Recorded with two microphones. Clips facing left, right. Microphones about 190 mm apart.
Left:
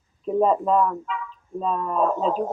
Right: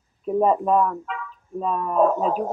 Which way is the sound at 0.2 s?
10° right (ahead or behind).